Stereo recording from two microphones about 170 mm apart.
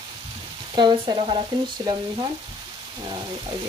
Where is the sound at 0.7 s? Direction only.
25° right (ahead or behind).